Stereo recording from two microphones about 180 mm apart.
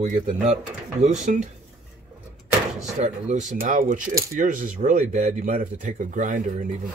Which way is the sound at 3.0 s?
40° right (ahead or behind).